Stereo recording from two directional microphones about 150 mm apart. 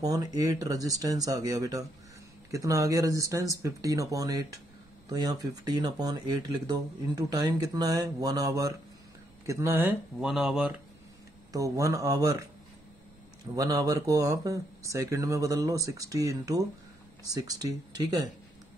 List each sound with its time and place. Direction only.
0.0 s speech: 25° right (ahead or behind)
10.2 s speech: 5° right (ahead or behind)
11.5 s speech: 20° right (ahead or behind)
13.6 s speech: 25° right (ahead or behind)